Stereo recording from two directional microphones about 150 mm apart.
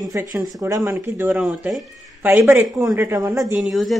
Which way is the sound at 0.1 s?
25° right (ahead or behind).